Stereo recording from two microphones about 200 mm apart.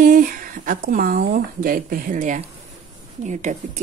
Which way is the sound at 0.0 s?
40° right (ahead or behind).